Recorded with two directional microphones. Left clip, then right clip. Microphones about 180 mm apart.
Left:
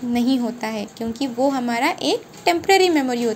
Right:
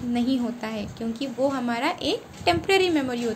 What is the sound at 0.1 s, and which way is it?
A woman's voice, 15° left (ahead or behind).